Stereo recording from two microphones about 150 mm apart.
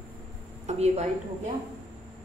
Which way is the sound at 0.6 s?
45° right (ahead or behind).